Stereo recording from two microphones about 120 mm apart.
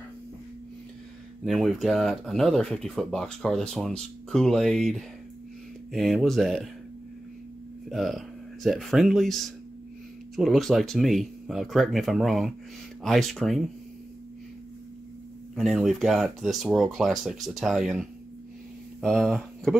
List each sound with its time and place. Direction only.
1.4 s speech: centre (ahead or behind)
7.9 s speech: centre (ahead or behind)
15.5 s speech: centre (ahead or behind)